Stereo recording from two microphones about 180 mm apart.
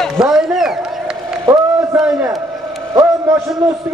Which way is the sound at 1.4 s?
20° right (ahead or behind).